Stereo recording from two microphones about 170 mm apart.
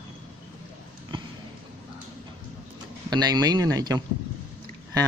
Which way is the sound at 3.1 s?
25° right (ahead or behind).